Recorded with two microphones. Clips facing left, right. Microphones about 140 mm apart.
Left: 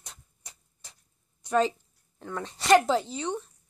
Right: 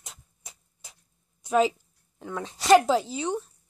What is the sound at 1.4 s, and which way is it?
A woman's voice, 5° right (ahead or behind).